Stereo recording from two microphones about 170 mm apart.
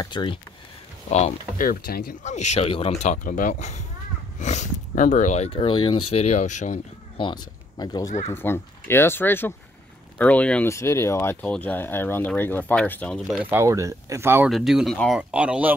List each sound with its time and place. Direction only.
0.0 s speech: 25° left (ahead or behind)
1.1 s speech: 40° left (ahead or behind)
1.7 s speech: 60° left (ahead or behind)
2.2 s speech: 40° left (ahead or behind)
7.2 s speech: 25° left (ahead or behind); by 13.2 s 10° left (ahead or behind)
13.3 s speech: 10° right (ahead or behind)
14.5 s speech: centre (ahead or behind)